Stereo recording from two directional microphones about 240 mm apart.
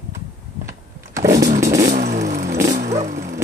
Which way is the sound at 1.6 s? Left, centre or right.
Centre.